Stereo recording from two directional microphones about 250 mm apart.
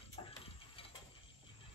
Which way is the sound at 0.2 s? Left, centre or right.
Centre.